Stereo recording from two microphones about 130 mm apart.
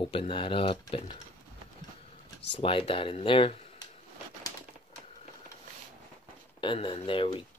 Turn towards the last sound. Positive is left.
turn(degrees=40)  # may be behind; listen again after turning